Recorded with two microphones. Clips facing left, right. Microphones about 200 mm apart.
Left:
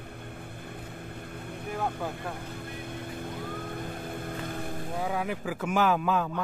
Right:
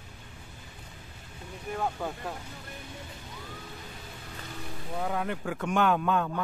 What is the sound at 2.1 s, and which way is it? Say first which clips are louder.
Vehicle: left 1 dB; 55° left (ahead or behind).